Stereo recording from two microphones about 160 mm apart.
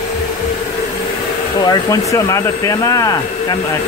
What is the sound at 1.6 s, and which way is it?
Speech, 25° left (ahead or behind).